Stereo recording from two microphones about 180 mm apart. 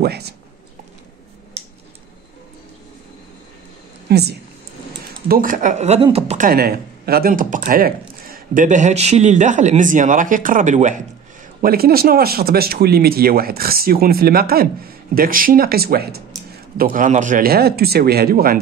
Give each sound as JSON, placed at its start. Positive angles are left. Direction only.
{"t": 0.0, "sound": "speech", "side_deg": -65}
{"t": 1.6, "sound": "a sound", "side_deg": -35}
{"t": 4.1, "sound": "speech", "side_deg": -65}
{"t": 5.3, "sound": "speech", "side_deg": -50}
{"t": 11.6, "sound": "speech", "side_deg": -55}